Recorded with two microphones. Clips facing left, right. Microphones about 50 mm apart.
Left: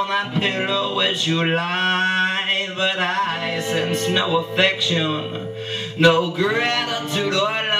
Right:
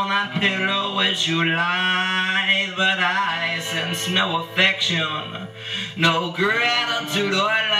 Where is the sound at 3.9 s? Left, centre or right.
Centre.